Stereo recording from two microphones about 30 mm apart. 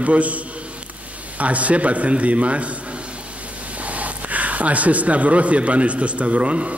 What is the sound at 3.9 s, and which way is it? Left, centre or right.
Speech, right.